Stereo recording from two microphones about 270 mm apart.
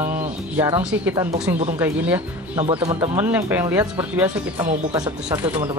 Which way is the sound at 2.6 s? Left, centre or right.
Right.